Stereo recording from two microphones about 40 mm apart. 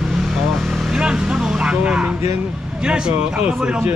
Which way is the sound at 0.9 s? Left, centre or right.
Right.